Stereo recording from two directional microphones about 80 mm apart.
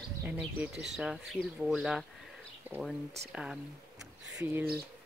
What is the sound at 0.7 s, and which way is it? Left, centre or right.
Speech, centre.